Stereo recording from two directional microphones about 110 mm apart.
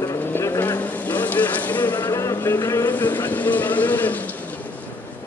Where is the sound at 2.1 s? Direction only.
25° left (ahead or behind).